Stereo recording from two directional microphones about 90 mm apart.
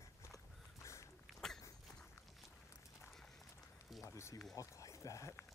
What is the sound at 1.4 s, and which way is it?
Dog, 5° left (ahead or behind).